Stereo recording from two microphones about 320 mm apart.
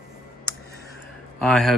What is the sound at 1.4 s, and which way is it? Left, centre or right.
Speech, centre.